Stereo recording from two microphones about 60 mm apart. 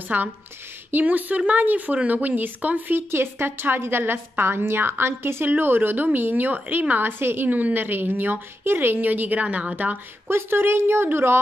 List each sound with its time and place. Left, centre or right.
0.1 s speech: right
3.0 s a woman's voice: right
10.2 s a woman's voice: right